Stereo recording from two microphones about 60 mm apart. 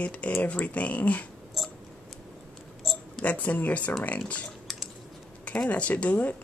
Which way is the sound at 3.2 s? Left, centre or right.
Left.